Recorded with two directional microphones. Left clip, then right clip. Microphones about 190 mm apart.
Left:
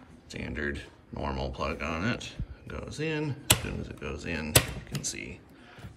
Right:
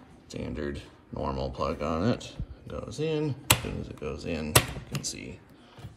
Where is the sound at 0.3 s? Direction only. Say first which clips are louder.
Left 1 dB; 15° right (ahead or behind).